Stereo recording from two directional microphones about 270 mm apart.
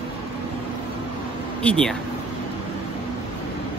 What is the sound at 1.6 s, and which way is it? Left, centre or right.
Speech, centre.